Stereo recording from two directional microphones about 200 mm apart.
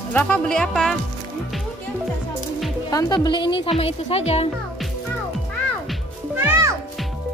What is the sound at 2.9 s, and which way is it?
A woman's voice, 15° left (ahead or behind).